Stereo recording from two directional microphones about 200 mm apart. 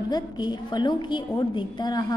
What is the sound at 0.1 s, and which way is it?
A woman's voice, 20° left (ahead or behind).